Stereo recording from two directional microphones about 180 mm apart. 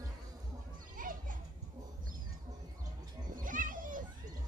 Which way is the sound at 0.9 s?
50° right (ahead or behind).